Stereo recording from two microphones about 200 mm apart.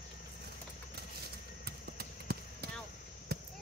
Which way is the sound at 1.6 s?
50° right (ahead or behind).